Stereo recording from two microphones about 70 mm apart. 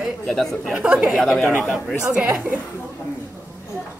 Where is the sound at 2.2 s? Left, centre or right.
Right.